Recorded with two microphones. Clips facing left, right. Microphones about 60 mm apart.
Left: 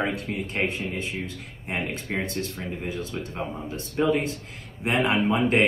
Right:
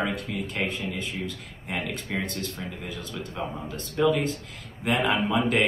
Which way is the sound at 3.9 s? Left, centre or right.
Left.